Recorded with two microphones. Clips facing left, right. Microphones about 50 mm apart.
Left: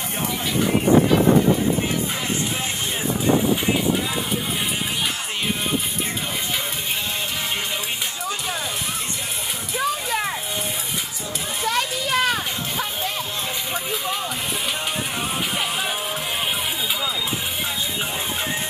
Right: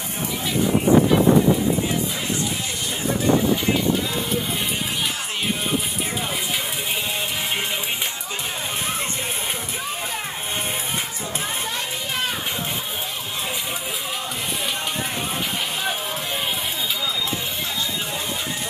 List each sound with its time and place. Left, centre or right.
11.6 s children playing: left